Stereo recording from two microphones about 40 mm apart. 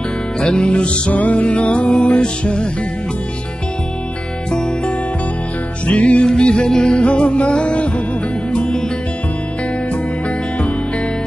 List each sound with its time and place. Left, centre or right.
0.4 s music: left
4.5 s music: centre
5.9 s music: left